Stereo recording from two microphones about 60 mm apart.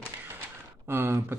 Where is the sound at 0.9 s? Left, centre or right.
Right.